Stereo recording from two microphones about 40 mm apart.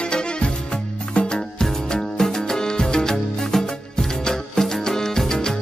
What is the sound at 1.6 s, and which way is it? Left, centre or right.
Music, centre.